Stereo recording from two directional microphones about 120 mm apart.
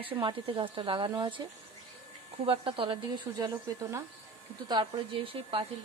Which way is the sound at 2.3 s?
50° right (ahead or behind).